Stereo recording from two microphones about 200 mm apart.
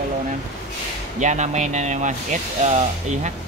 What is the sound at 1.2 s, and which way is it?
Speech, 35° right (ahead or behind).